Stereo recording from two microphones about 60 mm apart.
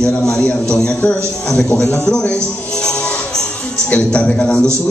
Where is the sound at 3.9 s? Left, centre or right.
Centre.